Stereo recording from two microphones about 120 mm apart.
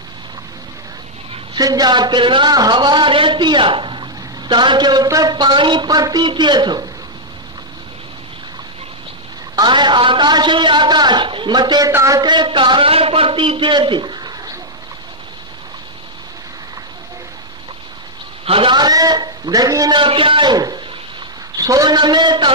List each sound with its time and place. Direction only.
1.6 s a man's voice: 30° right (ahead or behind)
9.6 s a man's voice: 40° right (ahead or behind)
11.9 s a man's voice: 25° right (ahead or behind)
18.4 s speech: 50° right (ahead or behind)
18.8 s a man's voice: 35° right (ahead or behind)
20.0 s a man's voice: 45° right (ahead or behind)